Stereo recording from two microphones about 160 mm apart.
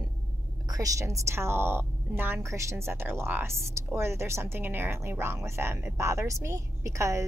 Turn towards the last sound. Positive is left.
turn(degrees=-20)  # may be behind; listen again after turning